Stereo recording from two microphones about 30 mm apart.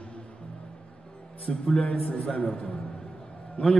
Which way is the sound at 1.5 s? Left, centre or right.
Centre.